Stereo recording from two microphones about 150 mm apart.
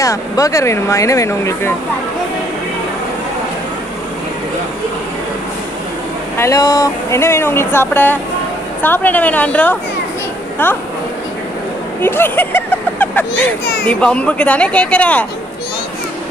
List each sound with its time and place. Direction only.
0.0 s speech: 20° left (ahead or behind)
6.3 s speech: 20° left (ahead or behind)
12.0 s speech: 15° left (ahead or behind)